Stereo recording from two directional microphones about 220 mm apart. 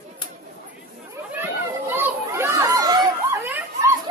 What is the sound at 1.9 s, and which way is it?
Chatter, 10° right (ahead or behind).